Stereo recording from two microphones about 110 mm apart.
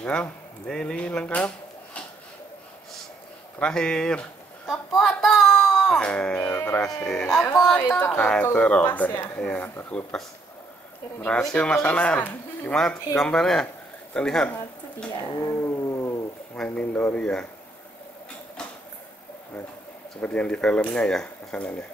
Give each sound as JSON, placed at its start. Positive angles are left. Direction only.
{"t": 0.0, "sound": "speech", "side_deg": 10}
{"t": 3.5, "sound": "a sound", "side_deg": 10}
{"t": 5.9, "sound": "speech", "side_deg": 10}
{"t": 6.9, "sound": "speech", "side_deg": 5}
{"t": 8.2, "sound": "speech", "side_deg": 15}
{"t": 11.2, "sound": "speech", "side_deg": 10}
{"t": 15.5, "sound": "a sound", "side_deg": 25}
{"t": 16.5, "sound": "speech", "side_deg": 10}
{"t": 20.2, "sound": "speech", "side_deg": 10}